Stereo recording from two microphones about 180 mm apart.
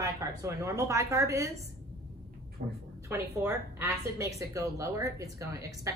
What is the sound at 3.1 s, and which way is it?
A woman's voice, 15° right (ahead or behind).